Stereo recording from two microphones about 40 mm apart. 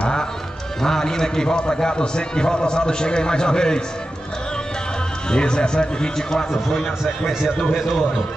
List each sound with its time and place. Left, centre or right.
0.0 s music: left
0.8 s a man's voice: centre
5.3 s a man's voice: left
6.3 s a man's voice: centre
7.2 s a man's voice: centre